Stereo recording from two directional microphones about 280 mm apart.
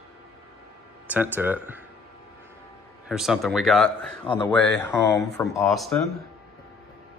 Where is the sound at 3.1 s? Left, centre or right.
Centre.